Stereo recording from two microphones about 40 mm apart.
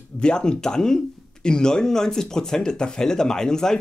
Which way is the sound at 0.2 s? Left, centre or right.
Left.